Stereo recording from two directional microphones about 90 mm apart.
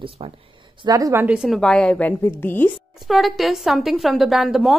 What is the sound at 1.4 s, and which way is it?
Speech, 5° left (ahead or behind).